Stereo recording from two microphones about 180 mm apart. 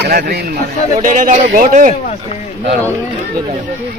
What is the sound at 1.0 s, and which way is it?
Speech, 45° right (ahead or behind).